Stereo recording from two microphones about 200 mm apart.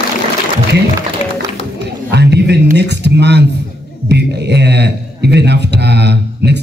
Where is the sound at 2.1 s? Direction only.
55° right (ahead or behind).